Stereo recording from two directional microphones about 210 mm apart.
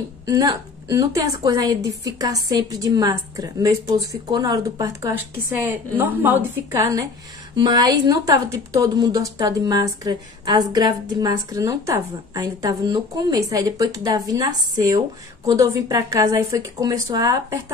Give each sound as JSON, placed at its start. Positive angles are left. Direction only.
{"t": 0.3, "sound": "speech", "side_deg": -15}